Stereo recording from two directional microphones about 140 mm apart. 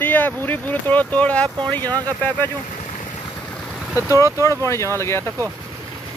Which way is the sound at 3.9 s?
20° right (ahead or behind).